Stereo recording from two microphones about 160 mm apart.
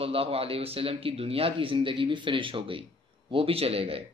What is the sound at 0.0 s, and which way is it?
Speech, 35° right (ahead or behind).